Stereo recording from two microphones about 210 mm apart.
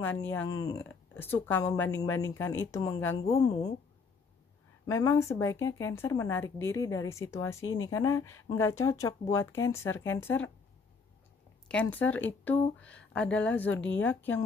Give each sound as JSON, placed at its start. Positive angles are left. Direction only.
{"t": 0.0, "sound": "speech", "side_deg": 10}
{"t": 4.8, "sound": "speech", "side_deg": 15}
{"t": 7.6, "sound": "speech", "side_deg": 75}
{"t": 7.9, "sound": "speech", "side_deg": 15}
{"t": 11.6, "sound": "speech", "side_deg": 5}